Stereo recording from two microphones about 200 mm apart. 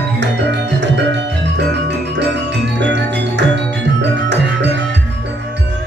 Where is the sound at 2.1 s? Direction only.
60° right (ahead or behind).